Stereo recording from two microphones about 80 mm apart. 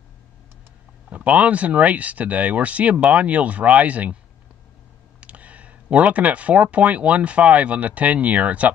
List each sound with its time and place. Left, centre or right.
1.1 s speech: centre
5.2 s speech: centre